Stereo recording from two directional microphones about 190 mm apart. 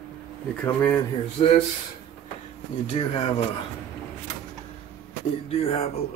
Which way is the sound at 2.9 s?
35° left (ahead or behind).